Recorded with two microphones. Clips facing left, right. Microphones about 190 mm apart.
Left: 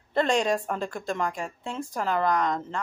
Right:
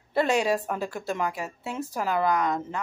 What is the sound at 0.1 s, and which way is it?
A woman's voice, 10° right (ahead or behind).